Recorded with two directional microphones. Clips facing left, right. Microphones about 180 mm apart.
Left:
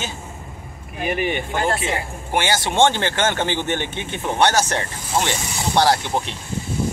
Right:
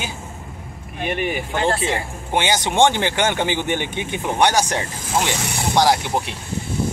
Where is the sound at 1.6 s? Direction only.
30° right (ahead or behind).